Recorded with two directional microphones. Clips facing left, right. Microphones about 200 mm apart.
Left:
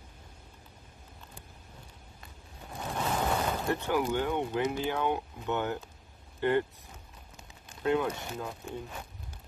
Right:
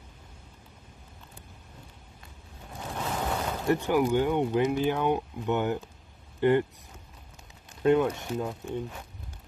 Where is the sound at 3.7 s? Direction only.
15° right (ahead or behind).